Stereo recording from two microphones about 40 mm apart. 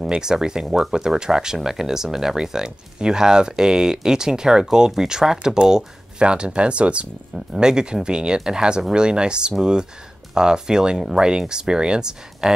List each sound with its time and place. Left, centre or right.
0.1 s speech: centre